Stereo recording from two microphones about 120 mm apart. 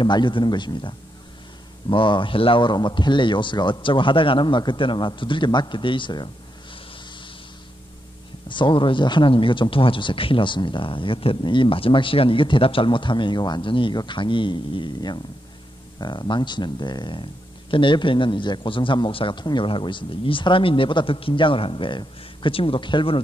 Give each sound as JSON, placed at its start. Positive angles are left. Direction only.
{"t": 0.0, "sound": "speech", "side_deg": 40}
{"t": 8.5, "sound": "speech", "side_deg": 40}